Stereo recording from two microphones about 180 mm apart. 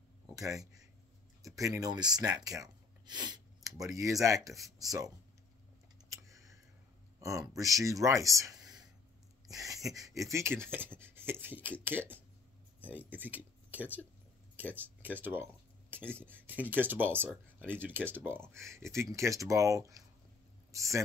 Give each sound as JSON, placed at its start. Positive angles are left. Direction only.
{"t": 1.4, "sound": "speech", "side_deg": -20}
{"t": 6.0, "sound": "computer keyboard", "side_deg": -15}
{"t": 7.2, "sound": "speech", "side_deg": -15}
{"t": 9.8, "sound": "speech", "side_deg": -20}